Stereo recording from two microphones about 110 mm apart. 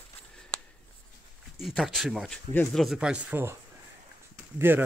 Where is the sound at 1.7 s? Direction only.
Centre (ahead or behind); by 3.5 s 20° right (ahead or behind).